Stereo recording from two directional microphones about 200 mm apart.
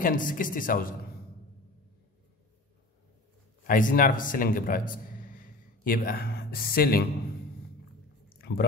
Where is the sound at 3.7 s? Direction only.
45° left (ahead or behind).